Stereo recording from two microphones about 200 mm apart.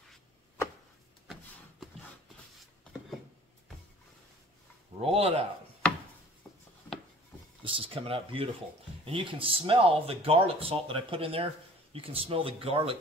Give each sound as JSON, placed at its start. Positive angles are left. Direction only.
{"t": 1.2, "sound": "a sound", "side_deg": 0}
{"t": 5.0, "sound": "speech", "side_deg": -30}
{"t": 7.6, "sound": "speech", "side_deg": -25}